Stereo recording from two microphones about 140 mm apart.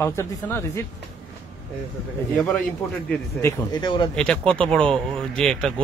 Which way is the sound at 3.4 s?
25° left (ahead or behind).